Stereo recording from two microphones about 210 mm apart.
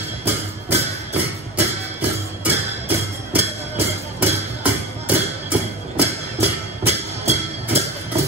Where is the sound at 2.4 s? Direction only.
10° right (ahead or behind).